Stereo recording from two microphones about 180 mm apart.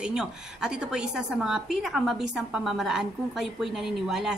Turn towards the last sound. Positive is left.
turn(degrees=0)  # may be behind; listen again after turning